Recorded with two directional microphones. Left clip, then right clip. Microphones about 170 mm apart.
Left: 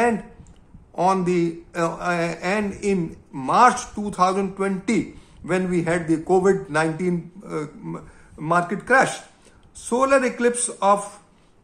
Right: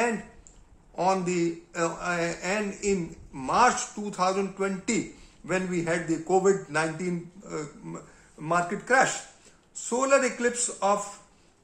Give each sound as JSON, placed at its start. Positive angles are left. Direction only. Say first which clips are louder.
{"t": 0.9, "sound": "speech", "louder": "left 6 dB", "side_deg": 30}